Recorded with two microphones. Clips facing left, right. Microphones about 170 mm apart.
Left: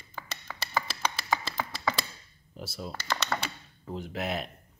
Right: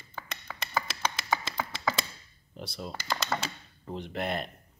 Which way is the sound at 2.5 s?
5° left (ahead or behind).